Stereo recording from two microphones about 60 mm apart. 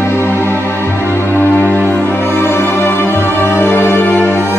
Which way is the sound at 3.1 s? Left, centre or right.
Right.